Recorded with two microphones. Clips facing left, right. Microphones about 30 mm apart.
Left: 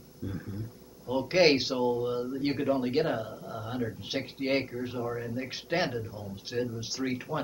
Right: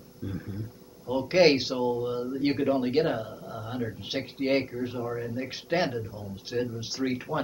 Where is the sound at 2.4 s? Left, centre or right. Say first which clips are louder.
Right 4 dB; centre.